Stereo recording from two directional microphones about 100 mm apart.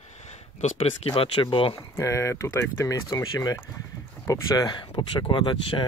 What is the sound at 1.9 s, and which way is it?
Speech, 30° left (ahead or behind).